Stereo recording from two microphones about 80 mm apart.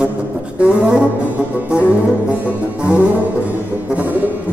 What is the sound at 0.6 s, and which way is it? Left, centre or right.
Music, centre.